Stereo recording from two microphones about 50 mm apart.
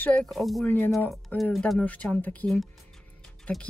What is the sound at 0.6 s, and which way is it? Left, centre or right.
Speech, left.